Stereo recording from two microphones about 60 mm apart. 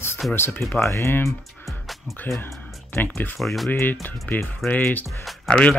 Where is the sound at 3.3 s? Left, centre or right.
Centre.